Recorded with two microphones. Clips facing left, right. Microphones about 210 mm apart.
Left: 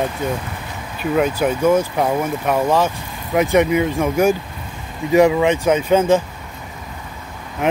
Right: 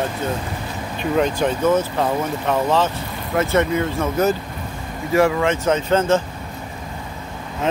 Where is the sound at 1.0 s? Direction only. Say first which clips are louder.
Left 1 dB; 5° left (ahead or behind).